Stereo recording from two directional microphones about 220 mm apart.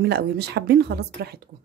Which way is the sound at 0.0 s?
50° right (ahead or behind).